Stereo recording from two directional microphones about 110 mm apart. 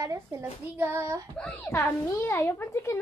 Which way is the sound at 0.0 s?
30° right (ahead or behind).